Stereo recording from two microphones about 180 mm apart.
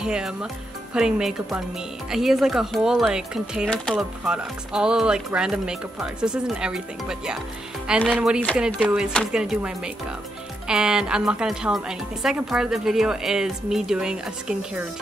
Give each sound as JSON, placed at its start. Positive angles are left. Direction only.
{"t": 0.0, "sound": "speech", "side_deg": -5}
{"t": 10.7, "sound": "speech", "side_deg": -5}